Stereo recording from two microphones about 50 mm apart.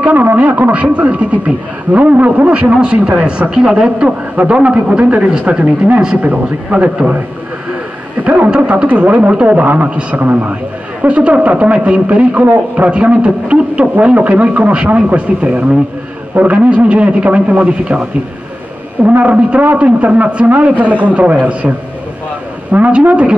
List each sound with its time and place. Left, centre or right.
0.0 s a man's voice: right
8.2 s a man's voice: right
19.0 s a man's voice: right